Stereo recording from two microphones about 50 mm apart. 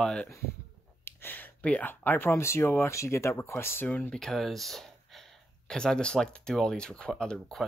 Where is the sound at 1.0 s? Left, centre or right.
Left.